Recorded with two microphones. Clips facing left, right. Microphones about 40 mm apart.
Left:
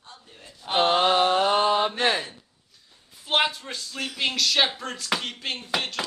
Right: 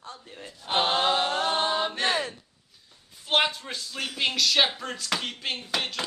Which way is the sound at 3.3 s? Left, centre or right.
Centre.